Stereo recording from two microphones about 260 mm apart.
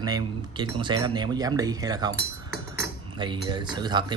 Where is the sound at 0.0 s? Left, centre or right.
Centre.